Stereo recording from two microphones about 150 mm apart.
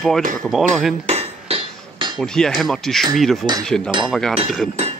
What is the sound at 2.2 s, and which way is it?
Speech, 5° left (ahead or behind).